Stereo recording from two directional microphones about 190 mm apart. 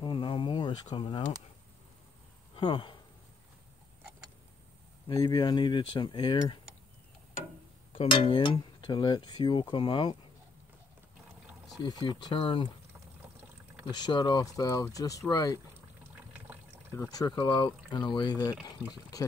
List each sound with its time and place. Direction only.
0.0 s insect: 25° left (ahead or behind)
0.9 s speech: 25° left (ahead or behind)
2.5 s speech: 25° left (ahead or behind)
5.0 s speech: 20° left (ahead or behind)
7.9 s speech: 25° left (ahead or behind)
11.8 s speech: 25° left (ahead or behind)
13.8 s speech: 20° left (ahead or behind)
16.9 s speech: 15° left (ahead or behind)